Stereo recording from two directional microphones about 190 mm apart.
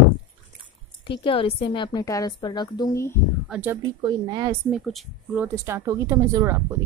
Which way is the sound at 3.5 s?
10° right (ahead or behind).